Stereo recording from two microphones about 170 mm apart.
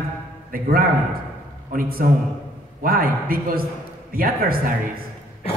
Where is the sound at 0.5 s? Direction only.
60° right (ahead or behind).